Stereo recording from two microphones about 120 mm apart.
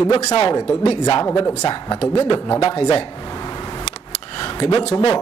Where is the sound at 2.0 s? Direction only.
55° left (ahead or behind).